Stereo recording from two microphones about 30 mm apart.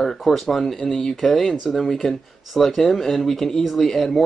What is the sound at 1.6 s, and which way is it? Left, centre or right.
Speech, centre.